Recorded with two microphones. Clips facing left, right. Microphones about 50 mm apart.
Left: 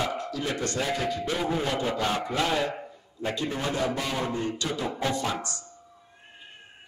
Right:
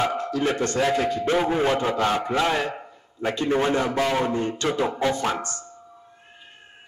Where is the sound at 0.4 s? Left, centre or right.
Right.